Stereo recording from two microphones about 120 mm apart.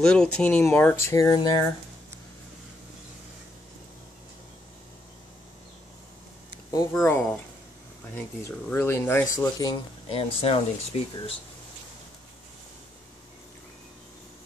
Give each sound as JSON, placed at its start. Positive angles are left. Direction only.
{"t": 0.0, "sound": "speech", "side_deg": 5}
{"t": 1.1, "sound": "speech", "side_deg": 30}
{"t": 6.9, "sound": "speech", "side_deg": 20}
{"t": 8.6, "sound": "speech", "side_deg": 20}
{"t": 10.0, "sound": "speech", "side_deg": 55}